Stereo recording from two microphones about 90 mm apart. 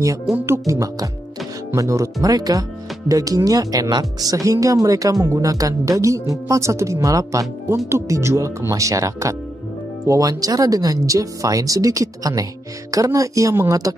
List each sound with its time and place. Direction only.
0.5 s speech: 35° right (ahead or behind)